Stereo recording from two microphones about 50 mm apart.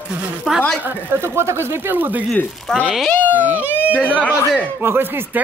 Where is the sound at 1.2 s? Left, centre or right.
Right.